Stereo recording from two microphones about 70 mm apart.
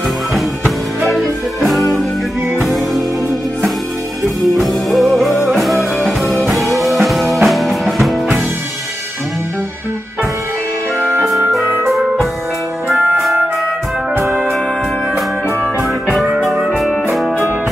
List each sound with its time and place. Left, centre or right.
0.3 s music: centre
4.6 s music: centre
11.8 s music: centre
12.8 s music: right
16.2 s music: centre